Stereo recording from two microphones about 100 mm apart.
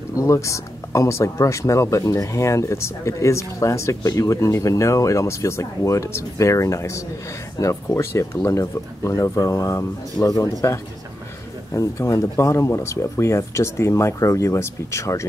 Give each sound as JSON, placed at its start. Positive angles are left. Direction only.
{"t": 0.1, "sound": "speech", "side_deg": 30}